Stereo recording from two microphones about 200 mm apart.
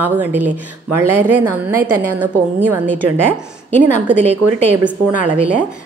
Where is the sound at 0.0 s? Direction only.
10° right (ahead or behind).